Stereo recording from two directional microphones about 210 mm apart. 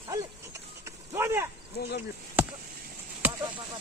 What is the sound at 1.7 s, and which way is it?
Speech, 50° left (ahead or behind).